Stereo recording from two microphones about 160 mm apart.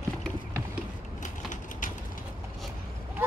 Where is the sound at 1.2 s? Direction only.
55° left (ahead or behind).